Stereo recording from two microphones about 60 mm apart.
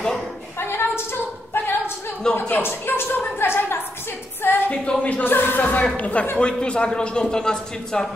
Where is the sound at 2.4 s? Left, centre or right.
Left.